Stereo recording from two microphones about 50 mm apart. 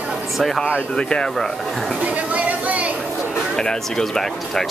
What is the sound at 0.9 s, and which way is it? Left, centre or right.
Speech, centre.